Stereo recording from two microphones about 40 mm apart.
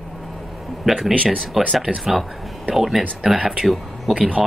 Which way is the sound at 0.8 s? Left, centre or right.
Centre.